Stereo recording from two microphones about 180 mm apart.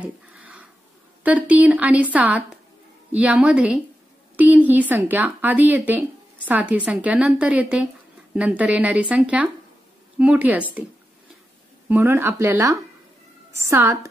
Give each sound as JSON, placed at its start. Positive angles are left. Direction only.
{"t": 0.0, "sound": "a sound", "side_deg": -5}
{"t": 1.2, "sound": "a woman's voice", "side_deg": -10}
{"t": 11.9, "sound": "a woman's voice", "side_deg": -10}